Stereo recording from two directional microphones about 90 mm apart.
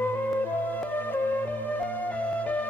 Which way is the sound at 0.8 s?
20° left (ahead or behind).